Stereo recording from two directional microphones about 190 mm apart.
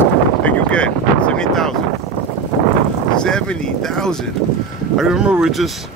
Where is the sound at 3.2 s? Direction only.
5° left (ahead or behind).